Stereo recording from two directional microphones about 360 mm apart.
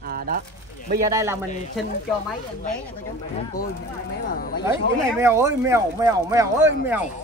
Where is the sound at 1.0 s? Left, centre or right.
Centre.